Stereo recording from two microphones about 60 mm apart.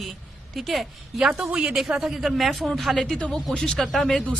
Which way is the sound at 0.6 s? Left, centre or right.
Centre.